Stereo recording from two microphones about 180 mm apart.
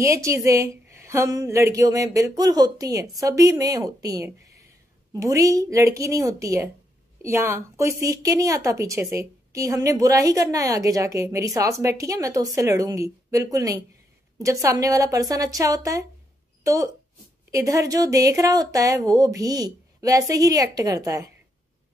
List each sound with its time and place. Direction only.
0.0 s a woman's voice: 15° right (ahead or behind)